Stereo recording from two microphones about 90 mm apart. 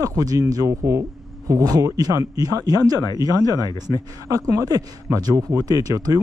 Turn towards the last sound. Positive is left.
turn(degrees=-45)  # may be behind; listen again after turning